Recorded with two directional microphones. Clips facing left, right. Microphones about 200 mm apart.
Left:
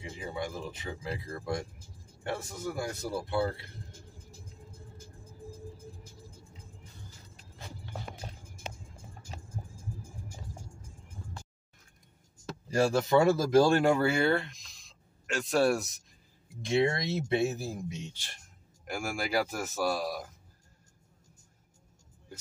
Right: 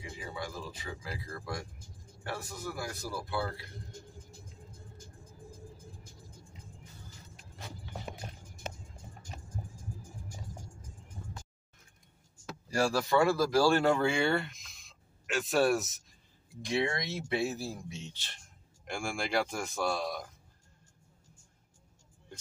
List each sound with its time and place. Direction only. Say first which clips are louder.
0.1 s speech: left 4 dB; 20° left (ahead or behind)
12.6 s speech: left 3 dB; 20° left (ahead or behind); by 16.0 s centre (ahead or behind)
16.6 s speech: left 4 dB; 25° left (ahead or behind); by 20.2 s 5° left (ahead or behind)